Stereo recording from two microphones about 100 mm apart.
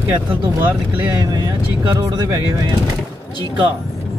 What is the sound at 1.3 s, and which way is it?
Speech, 40° right (ahead or behind).